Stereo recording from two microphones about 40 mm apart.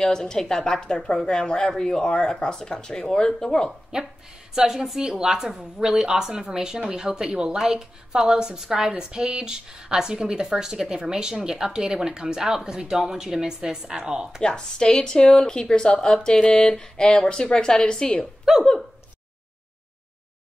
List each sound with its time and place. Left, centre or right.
0.0 s a woman's voice: centre
3.9 s speech: right
4.6 s a woman's voice: centre
14.4 s speech: left
18.4 s a sound: centre